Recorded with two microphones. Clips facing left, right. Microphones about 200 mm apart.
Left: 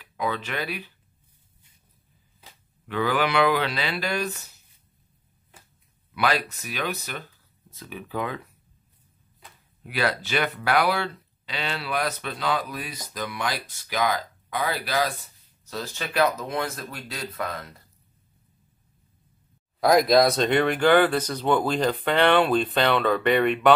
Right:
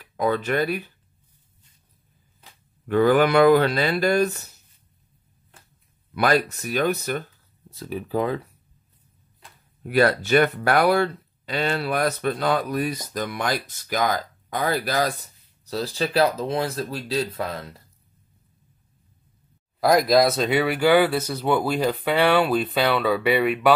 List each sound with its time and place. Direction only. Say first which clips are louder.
0.0 s speech: right 6 dB; 45° right (ahead or behind)
2.9 s speech: right 7 dB; 45° right (ahead or behind)
6.1 s speech: right 5 dB; 45° right (ahead or behind)
9.8 s speech: right 8 dB; 50° right (ahead or behind)
15.6 s speech: right 7 dB; 35° right (ahead or behind)
19.8 s speech: even; centre (ahead or behind)